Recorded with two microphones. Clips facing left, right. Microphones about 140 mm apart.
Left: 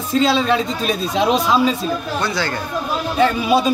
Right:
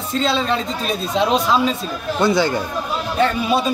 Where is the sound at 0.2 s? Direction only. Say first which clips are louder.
Left 3 dB; 5° left (ahead or behind).